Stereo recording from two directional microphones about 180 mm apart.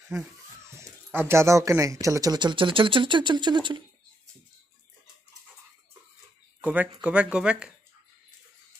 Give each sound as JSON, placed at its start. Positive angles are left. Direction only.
{"t": 0.7, "sound": "speech", "side_deg": -15}
{"t": 6.6, "sound": "speech", "side_deg": -10}